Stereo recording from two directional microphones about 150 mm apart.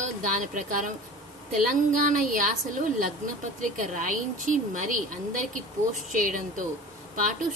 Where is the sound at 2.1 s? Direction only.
60° right (ahead or behind).